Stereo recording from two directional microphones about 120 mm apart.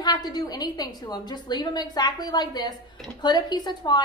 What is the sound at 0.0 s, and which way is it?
A woman's voice, 35° left (ahead or behind).